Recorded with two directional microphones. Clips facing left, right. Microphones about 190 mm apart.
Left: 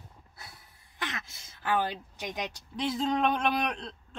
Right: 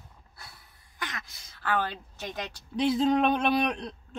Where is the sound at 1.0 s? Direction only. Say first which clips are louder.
Left 1 dB; 25° left (ahead or behind).